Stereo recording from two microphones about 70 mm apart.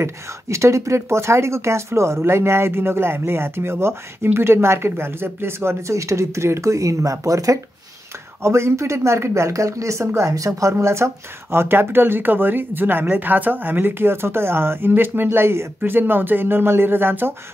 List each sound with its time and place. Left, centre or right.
0.0 s speech: right
8.4 s speech: right